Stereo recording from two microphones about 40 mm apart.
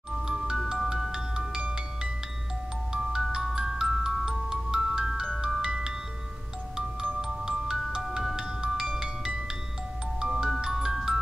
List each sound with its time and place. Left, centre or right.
0.3 s music: centre
0.7 s glockenspiel: centre
2.9 s music: centre
5.4 s glockenspiel: centre
7.2 s music: centre